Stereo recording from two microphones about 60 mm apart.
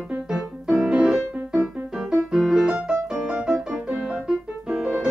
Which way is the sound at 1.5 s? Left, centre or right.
Centre.